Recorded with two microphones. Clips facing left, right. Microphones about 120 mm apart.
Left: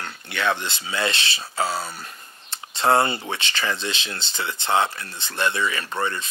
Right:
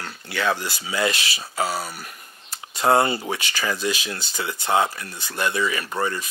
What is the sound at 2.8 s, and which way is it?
Speech, 25° right (ahead or behind).